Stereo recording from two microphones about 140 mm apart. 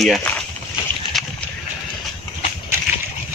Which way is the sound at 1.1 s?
Centre (ahead or behind).